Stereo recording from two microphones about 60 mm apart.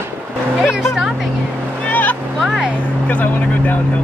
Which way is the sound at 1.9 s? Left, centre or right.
Left.